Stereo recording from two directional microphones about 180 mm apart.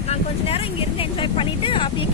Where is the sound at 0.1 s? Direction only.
30° left (ahead or behind).